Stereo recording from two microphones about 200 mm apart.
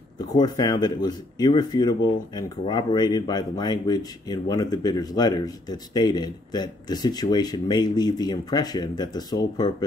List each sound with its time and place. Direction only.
0.4 s speech: 20° left (ahead or behind)